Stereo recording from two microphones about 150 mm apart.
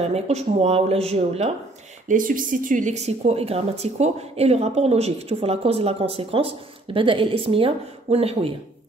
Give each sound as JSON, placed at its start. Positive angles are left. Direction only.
{"t": 0.0, "sound": "speech", "side_deg": -45}
{"t": 2.0, "sound": "speech", "side_deg": -65}